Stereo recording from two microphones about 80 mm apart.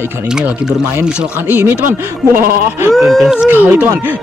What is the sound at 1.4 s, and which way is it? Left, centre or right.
Music, right.